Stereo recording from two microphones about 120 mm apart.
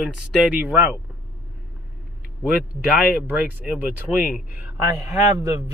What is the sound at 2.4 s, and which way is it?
Speech, 10° right (ahead or behind).